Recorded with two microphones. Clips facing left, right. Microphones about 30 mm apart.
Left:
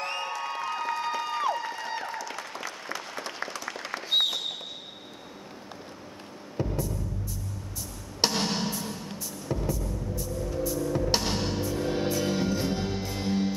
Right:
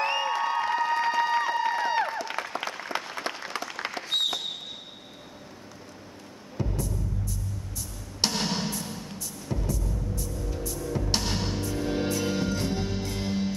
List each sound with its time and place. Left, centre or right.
0.0 s a sound: right
1.5 s applause: right
6.5 s music: centre